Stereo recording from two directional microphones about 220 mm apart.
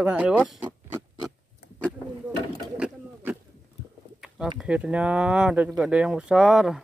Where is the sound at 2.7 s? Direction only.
5° right (ahead or behind).